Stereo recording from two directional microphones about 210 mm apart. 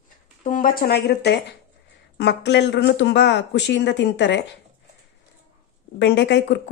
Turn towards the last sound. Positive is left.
turn(degrees=55)  # may be behind; listen again after turning